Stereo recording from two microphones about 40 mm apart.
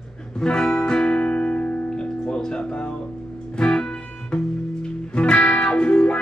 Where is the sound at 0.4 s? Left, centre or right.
Centre; by 1.8 s left.